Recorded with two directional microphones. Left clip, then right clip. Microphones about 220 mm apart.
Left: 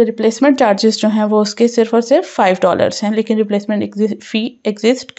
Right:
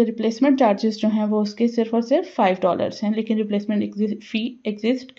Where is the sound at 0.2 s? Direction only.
20° left (ahead or behind).